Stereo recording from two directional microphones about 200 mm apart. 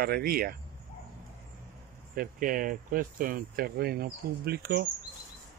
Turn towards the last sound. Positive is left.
turn(degrees=-50)  # may be behind; listen again after turning